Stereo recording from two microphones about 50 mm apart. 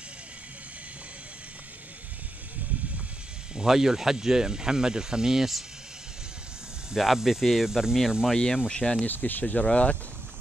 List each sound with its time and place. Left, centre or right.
3.5 s speech: centre
7.0 s speech: centre
8.3 s speech: centre
9.0 s speech: left